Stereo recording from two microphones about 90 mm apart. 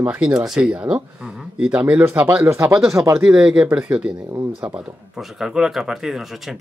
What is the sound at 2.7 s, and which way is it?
Speech, 5° right (ahead or behind).